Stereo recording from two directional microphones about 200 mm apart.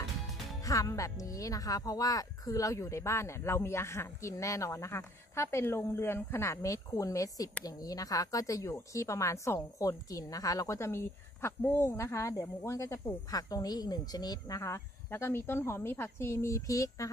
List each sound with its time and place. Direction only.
0.7 s speech: 15° left (ahead or behind)